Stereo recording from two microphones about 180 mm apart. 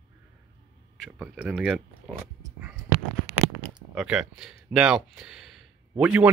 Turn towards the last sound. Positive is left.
turn(degrees=-10)  # may be behind; listen again after turning